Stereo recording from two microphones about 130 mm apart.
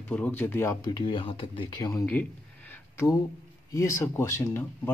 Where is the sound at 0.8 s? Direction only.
35° left (ahead or behind).